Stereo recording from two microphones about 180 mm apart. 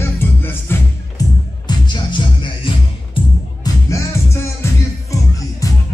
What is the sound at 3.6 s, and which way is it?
Music, 15° left (ahead or behind).